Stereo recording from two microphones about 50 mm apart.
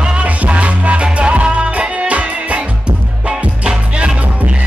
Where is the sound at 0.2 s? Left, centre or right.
Right.